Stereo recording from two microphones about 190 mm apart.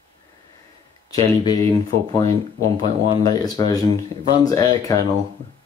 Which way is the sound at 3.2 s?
20° left (ahead or behind).